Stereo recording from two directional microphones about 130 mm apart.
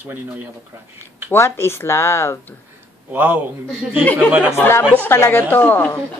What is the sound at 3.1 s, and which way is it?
Speech, 15° right (ahead or behind).